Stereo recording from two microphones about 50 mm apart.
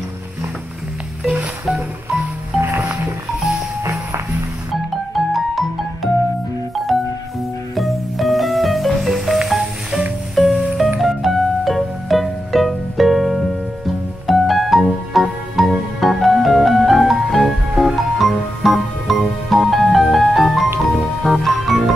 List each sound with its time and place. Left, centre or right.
1.2 s music: centre
5.1 s music: centre
6.9 s music: centre